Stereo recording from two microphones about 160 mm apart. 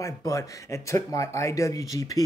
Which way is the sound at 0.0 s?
20° left (ahead or behind).